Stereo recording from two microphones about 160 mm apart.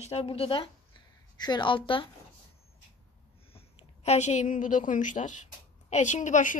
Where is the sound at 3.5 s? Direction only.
40° left (ahead or behind).